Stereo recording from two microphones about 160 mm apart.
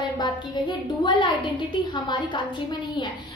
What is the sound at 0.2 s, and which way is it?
A woman's voice, 30° left (ahead or behind).